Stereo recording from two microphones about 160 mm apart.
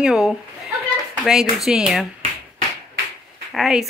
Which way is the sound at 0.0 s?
5° right (ahead or behind).